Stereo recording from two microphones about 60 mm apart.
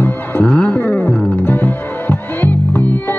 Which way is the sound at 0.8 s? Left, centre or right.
Left.